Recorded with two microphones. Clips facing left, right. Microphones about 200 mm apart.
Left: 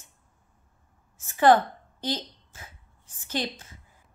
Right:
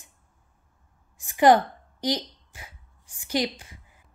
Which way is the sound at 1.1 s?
15° right (ahead or behind).